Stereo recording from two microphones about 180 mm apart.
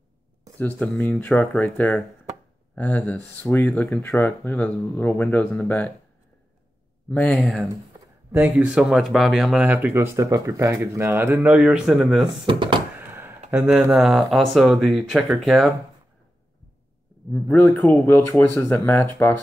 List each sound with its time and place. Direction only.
0.6 s speech: 10° left (ahead or behind)
7.1 s speech: 5° left (ahead or behind)
8.3 s speech: 10° right (ahead or behind)
12.4 s speech: 25° right (ahead or behind)
13.0 s a sound: 10° right (ahead or behind)
13.5 s speech: 10° right (ahead or behind)
17.3 s speech: 10° left (ahead or behind)